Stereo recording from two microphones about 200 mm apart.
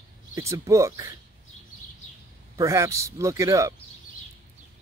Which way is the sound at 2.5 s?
15° right (ahead or behind).